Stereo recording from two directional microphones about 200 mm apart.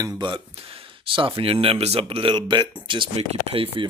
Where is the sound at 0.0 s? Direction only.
20° right (ahead or behind).